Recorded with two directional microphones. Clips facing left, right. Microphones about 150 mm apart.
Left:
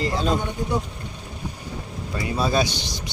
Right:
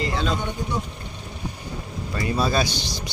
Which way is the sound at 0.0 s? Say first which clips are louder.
Left 2 dB; 40° left (ahead or behind).